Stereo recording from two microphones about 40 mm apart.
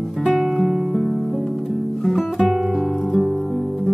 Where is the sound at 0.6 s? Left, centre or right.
Centre.